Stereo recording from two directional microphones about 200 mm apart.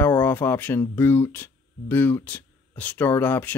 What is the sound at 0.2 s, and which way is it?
Speech, 10° left (ahead or behind).